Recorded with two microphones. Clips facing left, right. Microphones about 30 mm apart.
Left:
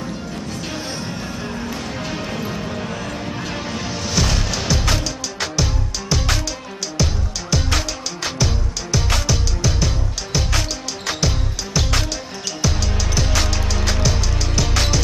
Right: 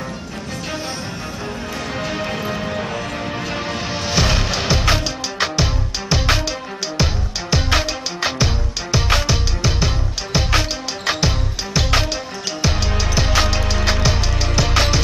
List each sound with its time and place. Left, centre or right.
2.0 s music: centre